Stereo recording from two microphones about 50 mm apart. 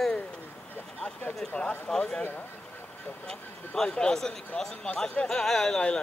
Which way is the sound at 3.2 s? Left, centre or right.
Centre.